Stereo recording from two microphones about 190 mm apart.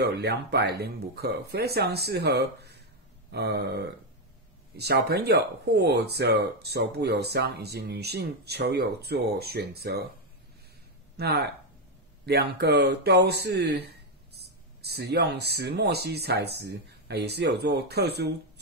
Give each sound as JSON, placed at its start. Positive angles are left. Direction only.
{"t": 0.0, "sound": "speech", "side_deg": -60}
{"t": 11.1, "sound": "speech", "side_deg": -60}